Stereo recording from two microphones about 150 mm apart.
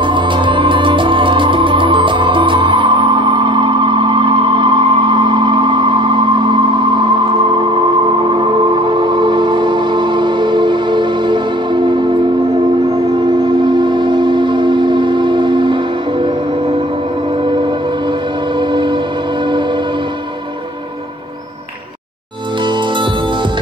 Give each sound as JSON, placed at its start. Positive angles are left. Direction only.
{"t": 0.0, "sound": "music", "side_deg": -35}
{"t": 13.4, "sound": "civil defense siren", "side_deg": -30}
{"t": 18.6, "sound": "music", "side_deg": -30}